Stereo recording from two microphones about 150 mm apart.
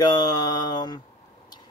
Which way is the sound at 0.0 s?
25° left (ahead or behind).